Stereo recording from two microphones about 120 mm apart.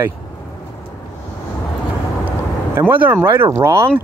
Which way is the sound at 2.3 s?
15° right (ahead or behind).